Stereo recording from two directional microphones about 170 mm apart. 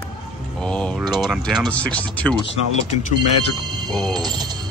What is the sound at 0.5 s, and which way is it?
Speech, 5° left (ahead or behind).